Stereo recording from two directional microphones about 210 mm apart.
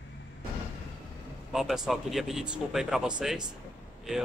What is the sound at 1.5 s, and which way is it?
Speech, centre (ahead or behind).